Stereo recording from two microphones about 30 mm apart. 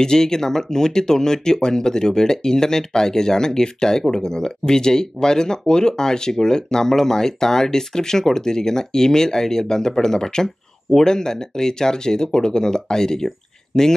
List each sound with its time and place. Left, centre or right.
0.0 s speech: left